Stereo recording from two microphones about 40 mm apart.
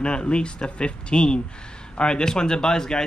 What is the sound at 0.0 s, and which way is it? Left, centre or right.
Speech, left.